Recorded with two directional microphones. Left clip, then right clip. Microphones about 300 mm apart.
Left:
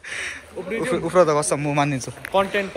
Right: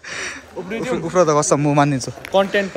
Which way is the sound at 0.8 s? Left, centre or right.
Centre.